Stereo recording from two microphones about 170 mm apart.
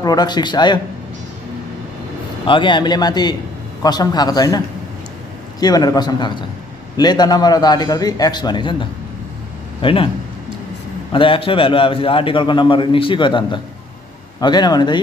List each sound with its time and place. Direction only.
0.0 s a man's voice: 25° left (ahead or behind)
2.4 s a man's voice: 30° left (ahead or behind)
5.6 s a man's voice: 25° left (ahead or behind)
11.1 s a man's voice: 30° left (ahead or behind)